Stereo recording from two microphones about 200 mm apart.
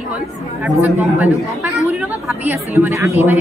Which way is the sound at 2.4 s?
10° right (ahead or behind).